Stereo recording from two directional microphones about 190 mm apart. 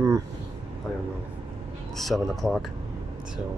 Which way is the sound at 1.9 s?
Centre (ahead or behind).